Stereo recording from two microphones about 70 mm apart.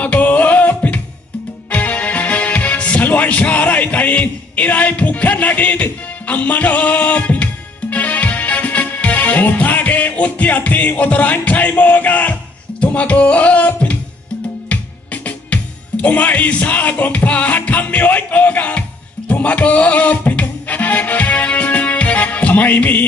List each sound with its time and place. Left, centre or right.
0.0 s music: centre
1.7 s speech: left
7.9 s music: left